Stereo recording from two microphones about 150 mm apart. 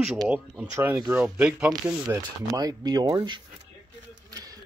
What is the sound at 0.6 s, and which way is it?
Speech, 15° right (ahead or behind).